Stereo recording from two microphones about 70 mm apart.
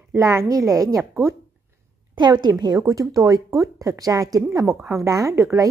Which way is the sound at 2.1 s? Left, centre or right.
Right.